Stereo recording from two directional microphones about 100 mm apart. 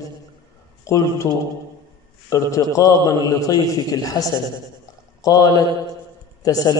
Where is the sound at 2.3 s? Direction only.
35° left (ahead or behind).